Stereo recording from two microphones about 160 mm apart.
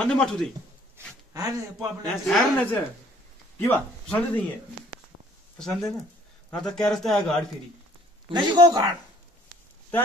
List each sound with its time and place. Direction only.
0.0 s speech: 5° left (ahead or behind)
0.9 s a sound: 20° right (ahead or behind)
2.2 s speech: 5° left (ahead or behind)
5.6 s speech: centre (ahead or behind)
8.3 s a man's voice: 30° right (ahead or behind)